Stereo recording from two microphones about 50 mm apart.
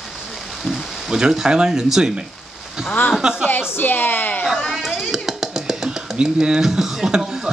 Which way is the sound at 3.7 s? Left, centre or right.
Left.